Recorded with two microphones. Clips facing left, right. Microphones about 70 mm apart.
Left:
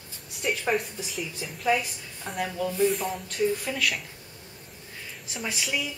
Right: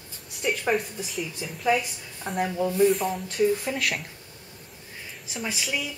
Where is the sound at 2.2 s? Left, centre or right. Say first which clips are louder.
Right 4 dB; centre.